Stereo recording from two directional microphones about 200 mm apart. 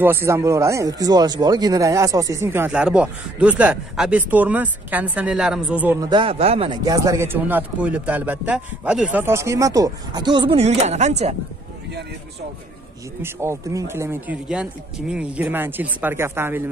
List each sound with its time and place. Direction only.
0.0 s speech: 10° right (ahead or behind)
6.0 s speech: 25° right (ahead or behind)
13.2 s speech: 15° right (ahead or behind)